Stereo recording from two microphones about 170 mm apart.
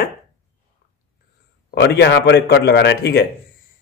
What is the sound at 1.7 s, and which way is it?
A man's voice, 75° left (ahead or behind).